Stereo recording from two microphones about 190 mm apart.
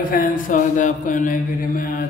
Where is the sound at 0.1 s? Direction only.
45° left (ahead or behind).